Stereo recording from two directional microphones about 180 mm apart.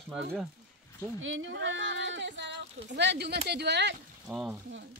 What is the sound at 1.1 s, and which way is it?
Speech, 90° right.